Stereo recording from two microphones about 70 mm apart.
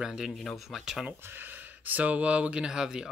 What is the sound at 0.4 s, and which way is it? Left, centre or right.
Speech, centre.